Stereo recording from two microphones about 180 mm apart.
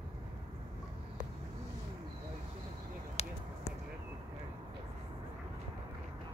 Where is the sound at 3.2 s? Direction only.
35° left (ahead or behind).